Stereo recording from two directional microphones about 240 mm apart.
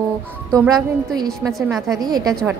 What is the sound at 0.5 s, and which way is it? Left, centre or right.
Speech, centre.